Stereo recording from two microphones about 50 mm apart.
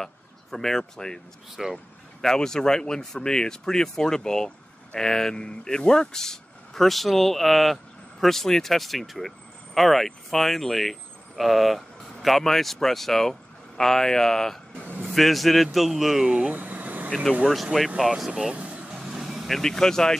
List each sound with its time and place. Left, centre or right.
0.0 s speech: centre
1.6 s speech: centre
2.2 s speech: centre
16.3 s speech: right
16.5 s vehicle: right
17.7 s speech: centre
18.5 s vehicle: right
18.9 s vehicle: centre
19.5 s speech: centre